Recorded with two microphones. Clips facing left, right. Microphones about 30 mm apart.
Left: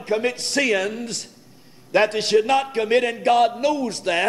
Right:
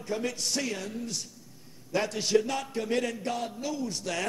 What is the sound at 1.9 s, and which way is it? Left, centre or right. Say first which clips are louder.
A man's voice: left 8 dB; left.